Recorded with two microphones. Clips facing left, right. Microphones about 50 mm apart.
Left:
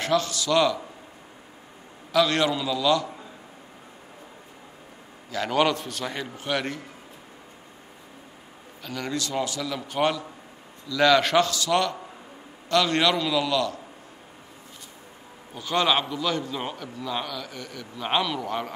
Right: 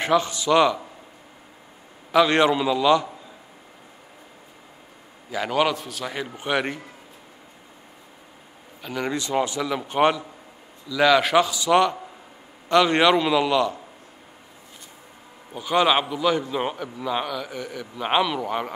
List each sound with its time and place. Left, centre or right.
0.0 s a man's voice: right
2.1 s a man's voice: right
5.3 s a man's voice: centre
6.3 s a man's voice: right
8.8 s a man's voice: centre
10.9 s a man's voice: centre
15.5 s a man's voice: centre